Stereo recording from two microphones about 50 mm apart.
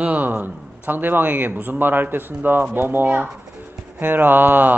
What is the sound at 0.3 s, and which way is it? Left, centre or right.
A man's voice, right.